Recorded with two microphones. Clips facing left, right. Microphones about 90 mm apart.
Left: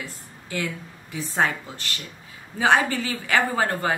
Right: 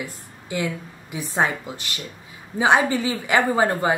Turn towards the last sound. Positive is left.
turn(degrees=-20)  # may be behind; listen again after turning